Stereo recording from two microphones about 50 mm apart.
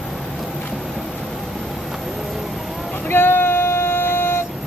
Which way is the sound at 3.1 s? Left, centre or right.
Left.